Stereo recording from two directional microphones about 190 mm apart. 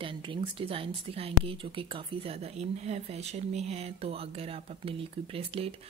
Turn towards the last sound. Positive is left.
turn(degrees=-30)  # may be behind; listen again after turning